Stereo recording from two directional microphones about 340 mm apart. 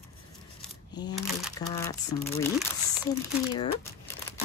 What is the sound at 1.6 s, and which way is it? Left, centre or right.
Speech, centre.